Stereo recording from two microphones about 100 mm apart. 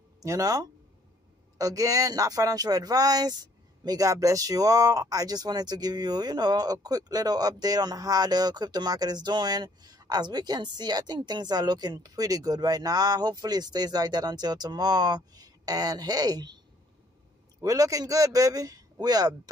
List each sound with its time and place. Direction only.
0.2 s speech: 35° right (ahead or behind)
17.6 s speech: 35° right (ahead or behind)